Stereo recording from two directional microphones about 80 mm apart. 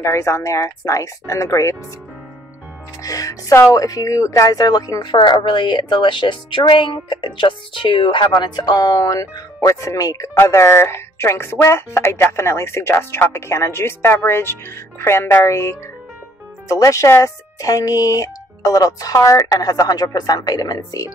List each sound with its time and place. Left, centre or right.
0.0 s speech: left
3.0 s speech: left
5.1 s a woman's voice: left
8.3 s speech: left